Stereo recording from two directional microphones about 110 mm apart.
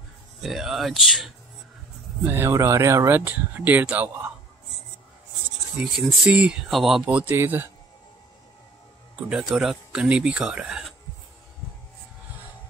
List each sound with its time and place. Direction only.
0.4 s speech: centre (ahead or behind)
2.2 s speech: 20° right (ahead or behind)
5.8 s speech: 5° right (ahead or behind)
7.1 s speech: 15° right (ahead or behind)
9.3 s speech: 5° right (ahead or behind)